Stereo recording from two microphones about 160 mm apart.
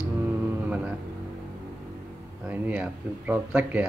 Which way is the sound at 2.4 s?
10° right (ahead or behind).